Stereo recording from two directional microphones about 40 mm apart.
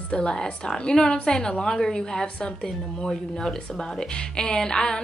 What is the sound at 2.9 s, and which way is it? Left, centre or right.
A woman's voice, centre.